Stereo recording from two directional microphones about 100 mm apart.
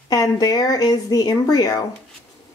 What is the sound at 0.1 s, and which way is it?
Speech, 35° left (ahead or behind).